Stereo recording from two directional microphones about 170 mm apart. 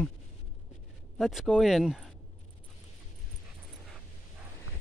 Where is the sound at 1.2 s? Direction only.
Centre (ahead or behind).